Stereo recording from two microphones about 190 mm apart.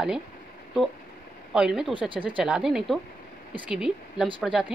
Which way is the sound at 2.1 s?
25° right (ahead or behind).